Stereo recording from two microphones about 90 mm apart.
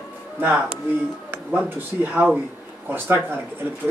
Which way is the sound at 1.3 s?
20° right (ahead or behind).